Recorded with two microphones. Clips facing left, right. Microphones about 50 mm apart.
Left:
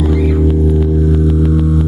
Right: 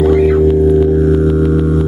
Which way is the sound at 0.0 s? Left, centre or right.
Right.